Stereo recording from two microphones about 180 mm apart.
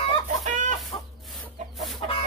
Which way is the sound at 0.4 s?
45° right (ahead or behind).